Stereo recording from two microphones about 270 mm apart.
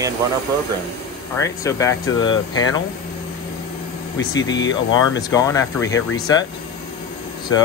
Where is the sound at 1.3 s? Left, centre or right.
Centre.